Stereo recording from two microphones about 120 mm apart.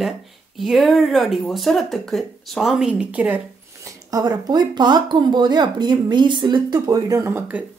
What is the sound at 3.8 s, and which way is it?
Speech, 30° right (ahead or behind).